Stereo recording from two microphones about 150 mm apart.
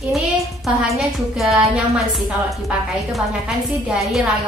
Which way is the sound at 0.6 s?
Centre (ahead or behind).